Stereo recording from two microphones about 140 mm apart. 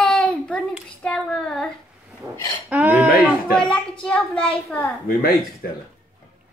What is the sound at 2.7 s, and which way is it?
Speech, 10° right (ahead or behind).